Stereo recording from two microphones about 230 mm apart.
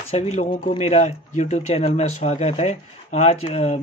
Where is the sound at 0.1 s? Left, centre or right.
Left.